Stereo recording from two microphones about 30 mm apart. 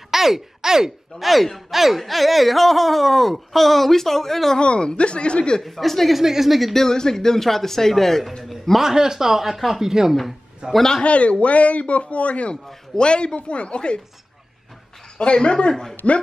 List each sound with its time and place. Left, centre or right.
0.1 s speech: centre
1.2 s speech: centre
4.6 s a woman's voice: left
5.6 s speech: centre
6.1 s speech: centre
6.7 s speech: centre
8.9 s a man's voice: centre
11.1 s speech: left
12.9 s a woman's voice: left
15.1 s a woman's voice: left
15.7 s speech: centre